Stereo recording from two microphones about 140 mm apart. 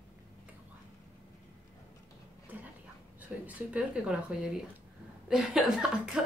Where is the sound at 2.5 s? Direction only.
15° right (ahead or behind).